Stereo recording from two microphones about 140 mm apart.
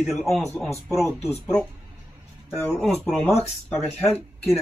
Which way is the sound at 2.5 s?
5° left (ahead or behind).